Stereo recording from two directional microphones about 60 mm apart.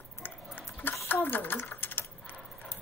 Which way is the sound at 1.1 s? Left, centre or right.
Left.